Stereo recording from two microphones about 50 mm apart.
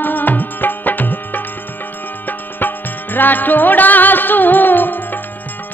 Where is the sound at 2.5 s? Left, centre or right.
Left.